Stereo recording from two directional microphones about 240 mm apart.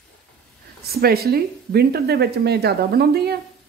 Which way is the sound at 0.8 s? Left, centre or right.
Right.